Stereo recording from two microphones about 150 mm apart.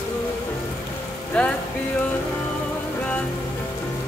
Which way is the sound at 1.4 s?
10° left (ahead or behind).